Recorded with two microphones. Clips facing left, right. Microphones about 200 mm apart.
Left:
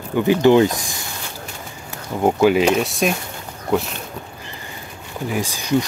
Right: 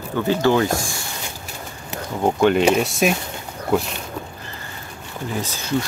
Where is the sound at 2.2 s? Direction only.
5° left (ahead or behind).